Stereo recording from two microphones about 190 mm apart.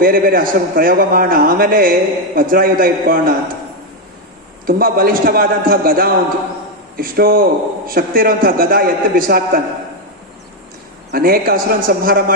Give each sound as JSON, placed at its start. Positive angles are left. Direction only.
{"t": 0.0, "sound": "a man's voice", "side_deg": -50}
{"t": 4.6, "sound": "a man's voice", "side_deg": -50}
{"t": 11.1, "sound": "a man's voice", "side_deg": -50}